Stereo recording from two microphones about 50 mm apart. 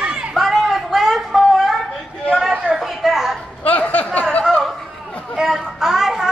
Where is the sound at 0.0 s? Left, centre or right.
Right.